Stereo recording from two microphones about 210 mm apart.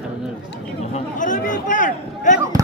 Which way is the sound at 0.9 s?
40° left (ahead or behind).